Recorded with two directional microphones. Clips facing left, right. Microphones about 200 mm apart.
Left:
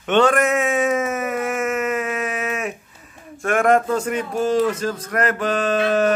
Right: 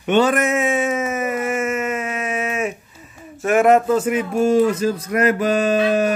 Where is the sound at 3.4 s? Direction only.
5° right (ahead or behind).